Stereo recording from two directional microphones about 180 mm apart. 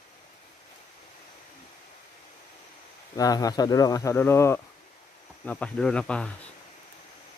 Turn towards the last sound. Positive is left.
turn(degrees=5)  # may be behind; listen again after turning